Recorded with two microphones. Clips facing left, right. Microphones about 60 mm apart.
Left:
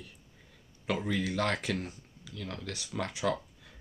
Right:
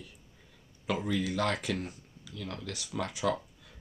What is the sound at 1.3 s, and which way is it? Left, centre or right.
Speech, centre.